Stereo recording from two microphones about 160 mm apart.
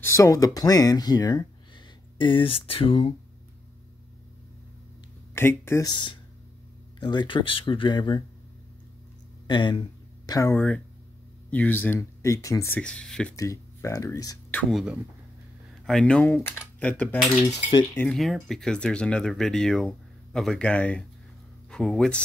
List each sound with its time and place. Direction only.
0.0 s speech: 20° left (ahead or behind); by 3.2 s 35° left (ahead or behind)
5.3 s speech: 15° left (ahead or behind)
9.5 s speech: 30° left (ahead or behind)
10.5 s speech: 10° left (ahead or behind)
13.4 s speech: 20° left (ahead or behind)
14.5 s speech: 5° left (ahead or behind)